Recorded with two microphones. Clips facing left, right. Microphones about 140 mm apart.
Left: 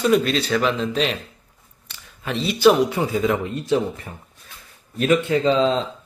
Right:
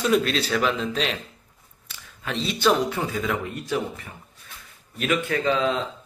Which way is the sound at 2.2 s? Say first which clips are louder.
Left 6 dB; 5° left (ahead or behind).